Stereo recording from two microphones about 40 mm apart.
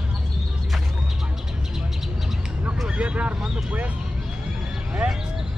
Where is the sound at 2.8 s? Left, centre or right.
Right.